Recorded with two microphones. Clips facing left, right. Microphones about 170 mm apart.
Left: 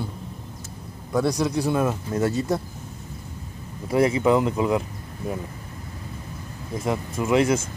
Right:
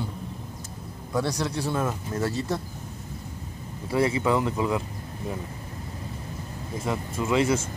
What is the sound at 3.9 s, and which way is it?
Speech, 20° left (ahead or behind).